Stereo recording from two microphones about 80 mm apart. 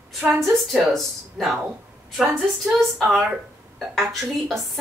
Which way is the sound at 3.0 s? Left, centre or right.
Centre.